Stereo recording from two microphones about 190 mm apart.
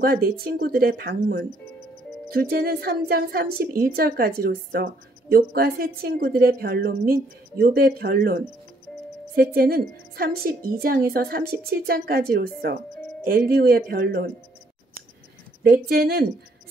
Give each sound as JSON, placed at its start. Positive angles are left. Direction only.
{"t": 0.0, "sound": "a woman's voice", "side_deg": -55}
{"t": 15.6, "sound": "a woman's voice", "side_deg": -55}